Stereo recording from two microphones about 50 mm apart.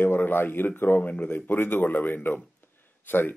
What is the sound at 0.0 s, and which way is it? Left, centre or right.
Speech, left.